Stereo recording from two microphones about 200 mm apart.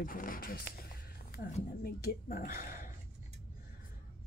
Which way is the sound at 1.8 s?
45° left (ahead or behind).